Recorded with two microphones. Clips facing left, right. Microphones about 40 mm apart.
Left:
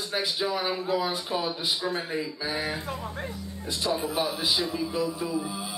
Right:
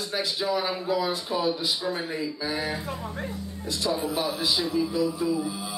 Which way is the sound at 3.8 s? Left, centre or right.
Left.